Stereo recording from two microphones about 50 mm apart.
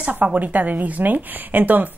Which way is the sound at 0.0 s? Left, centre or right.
Right.